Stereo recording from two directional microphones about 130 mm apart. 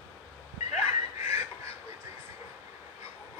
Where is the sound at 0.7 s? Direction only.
55° left (ahead or behind).